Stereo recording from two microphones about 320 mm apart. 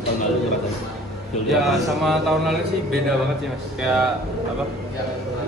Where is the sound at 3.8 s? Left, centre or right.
Centre.